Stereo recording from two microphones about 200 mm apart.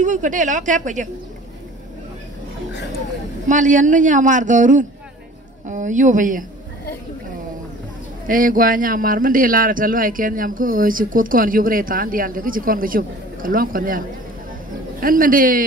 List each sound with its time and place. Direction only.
0.0 s speech: 40° right (ahead or behind)
3.4 s speech: 40° right (ahead or behind)
8.3 s speech: 45° right (ahead or behind)